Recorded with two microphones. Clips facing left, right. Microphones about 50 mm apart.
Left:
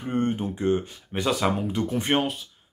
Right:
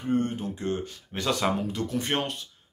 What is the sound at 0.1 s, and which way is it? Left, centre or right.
Speech, left.